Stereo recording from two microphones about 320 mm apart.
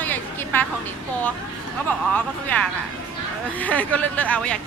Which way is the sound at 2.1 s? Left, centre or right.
Centre.